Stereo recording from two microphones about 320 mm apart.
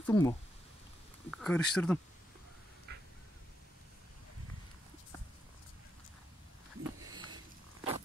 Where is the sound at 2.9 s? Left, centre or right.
Right.